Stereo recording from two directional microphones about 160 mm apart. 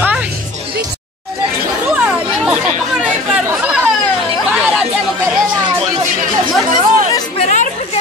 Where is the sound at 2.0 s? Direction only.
5° right (ahead or behind).